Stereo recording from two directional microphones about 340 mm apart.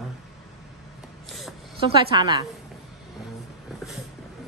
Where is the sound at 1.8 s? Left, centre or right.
Centre.